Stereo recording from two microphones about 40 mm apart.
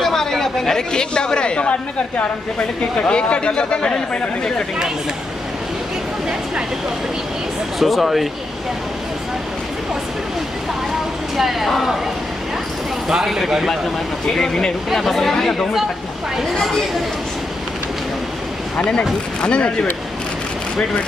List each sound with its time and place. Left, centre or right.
0.0 s speech: centre
7.8 s speech: centre
11.3 s speech: centre
13.1 s speech: centre
14.3 s speech: centre
18.8 s speech: left